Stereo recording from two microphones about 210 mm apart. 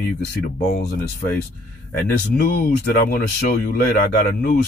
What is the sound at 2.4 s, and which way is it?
Speech, 45° left (ahead or behind).